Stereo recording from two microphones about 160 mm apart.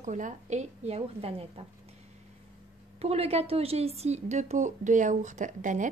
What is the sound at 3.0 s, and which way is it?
Speech, 40° right (ahead or behind).